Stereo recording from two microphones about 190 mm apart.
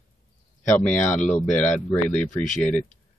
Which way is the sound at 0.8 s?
5° left (ahead or behind).